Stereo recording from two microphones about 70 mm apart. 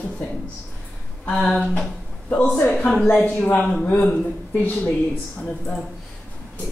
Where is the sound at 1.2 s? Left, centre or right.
Centre.